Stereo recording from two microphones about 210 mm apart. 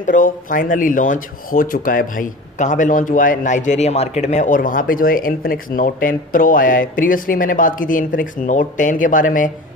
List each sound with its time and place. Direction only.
0.0 s speech: 40° left (ahead or behind)